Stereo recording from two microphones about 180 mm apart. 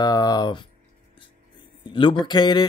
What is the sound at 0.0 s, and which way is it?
Music, 20° left (ahead or behind).